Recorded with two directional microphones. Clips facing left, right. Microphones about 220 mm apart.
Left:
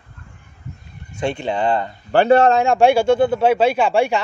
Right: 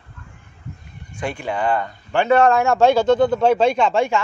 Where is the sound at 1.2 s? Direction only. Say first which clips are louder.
Left 3 dB; 25° left (ahead or behind).